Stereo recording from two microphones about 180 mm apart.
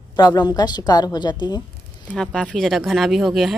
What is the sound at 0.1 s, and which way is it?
A woman's voice, 20° left (ahead or behind).